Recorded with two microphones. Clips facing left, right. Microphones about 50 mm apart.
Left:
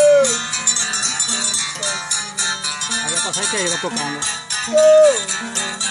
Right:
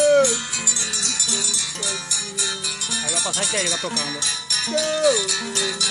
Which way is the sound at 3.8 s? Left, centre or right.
Left.